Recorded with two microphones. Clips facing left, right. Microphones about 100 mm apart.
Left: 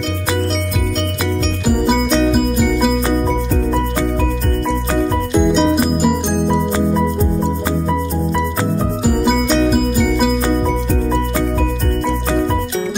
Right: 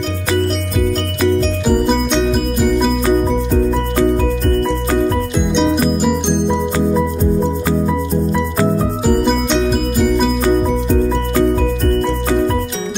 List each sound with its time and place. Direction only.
1.9 s music: 5° left (ahead or behind)
5.3 s music: centre (ahead or behind)